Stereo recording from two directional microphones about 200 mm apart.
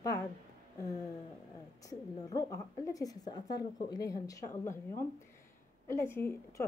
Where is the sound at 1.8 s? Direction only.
15° left (ahead or behind).